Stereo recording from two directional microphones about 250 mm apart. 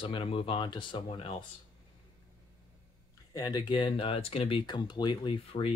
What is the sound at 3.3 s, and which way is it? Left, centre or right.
Speech, centre.